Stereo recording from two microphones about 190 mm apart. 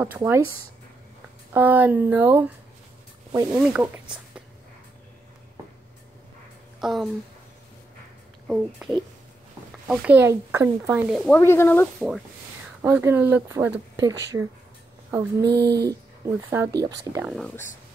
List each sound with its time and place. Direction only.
0.0 s speech: 10° right (ahead or behind)
1.5 s speech: 10° right (ahead or behind)
3.6 s speech: 5° right (ahead or behind)
6.8 s speech: centre (ahead or behind)
8.5 s a child's voice: 5° right (ahead or behind)
11.1 s speech: 5° left (ahead or behind)
12.8 s speech: 10° right (ahead or behind)
15.5 s speech: 60° right (ahead or behind)
15.9 s speech: 15° right (ahead or behind)
17.2 s a child's voice: centre (ahead or behind)